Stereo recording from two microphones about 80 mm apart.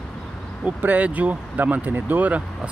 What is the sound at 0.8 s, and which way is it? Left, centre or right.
Speech, centre.